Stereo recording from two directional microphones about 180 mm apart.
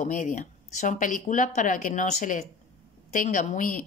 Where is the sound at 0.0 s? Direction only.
45° left (ahead or behind).